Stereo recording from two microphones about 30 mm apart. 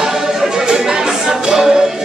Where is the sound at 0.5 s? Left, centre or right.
Centre.